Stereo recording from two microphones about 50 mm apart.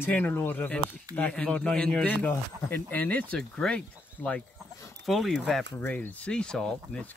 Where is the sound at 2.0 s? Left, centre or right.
Left.